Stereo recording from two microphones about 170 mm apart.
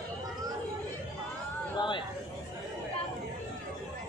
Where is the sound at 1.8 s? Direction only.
30° left (ahead or behind).